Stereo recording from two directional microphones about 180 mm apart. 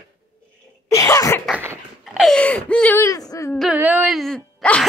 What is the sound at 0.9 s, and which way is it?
Cough, 15° left (ahead or behind).